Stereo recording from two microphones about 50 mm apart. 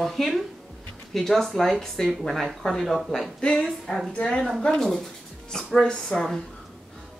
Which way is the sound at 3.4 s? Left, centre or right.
Centre.